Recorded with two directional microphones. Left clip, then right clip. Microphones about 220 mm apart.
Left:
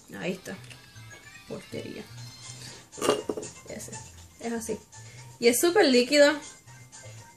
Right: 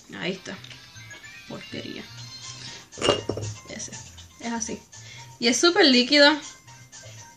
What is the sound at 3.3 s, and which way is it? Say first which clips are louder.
Speech: right 2 dB; 25° right (ahead or behind).